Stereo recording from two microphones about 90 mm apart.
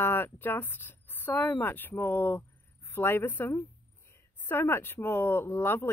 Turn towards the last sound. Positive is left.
turn(degrees=25)  # may be behind; listen again after turning